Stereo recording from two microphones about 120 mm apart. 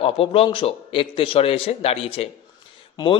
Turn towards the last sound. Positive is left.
turn(degrees=40)  # may be behind; listen again after turning